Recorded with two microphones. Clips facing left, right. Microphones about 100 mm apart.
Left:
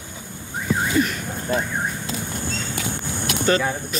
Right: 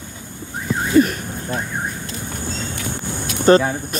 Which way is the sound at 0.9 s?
45° right (ahead or behind).